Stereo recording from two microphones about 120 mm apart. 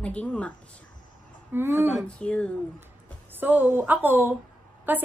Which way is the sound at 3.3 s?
15° right (ahead or behind).